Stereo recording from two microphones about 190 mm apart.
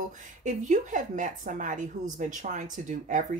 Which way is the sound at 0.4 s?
40° right (ahead or behind).